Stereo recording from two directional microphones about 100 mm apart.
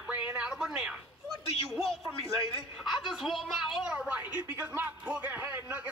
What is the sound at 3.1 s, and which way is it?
A woman's voice, centre (ahead or behind).